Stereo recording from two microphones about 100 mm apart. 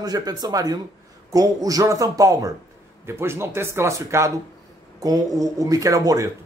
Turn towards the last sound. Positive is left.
turn(degrees=-35)  # may be behind; listen again after turning